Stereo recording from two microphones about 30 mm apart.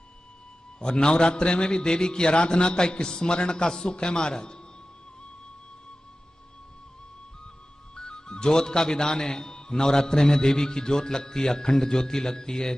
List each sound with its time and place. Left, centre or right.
0.7 s a man's voice: left
7.9 s a man's voice: left